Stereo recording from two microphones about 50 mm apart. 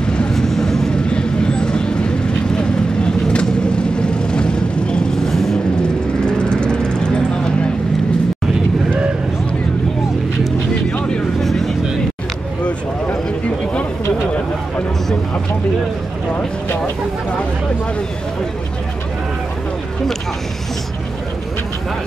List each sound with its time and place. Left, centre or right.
0.0 s vehicle: centre
5.3 s vehicle: centre
6.2 s vehicle: centre
11.4 s vehicle: centre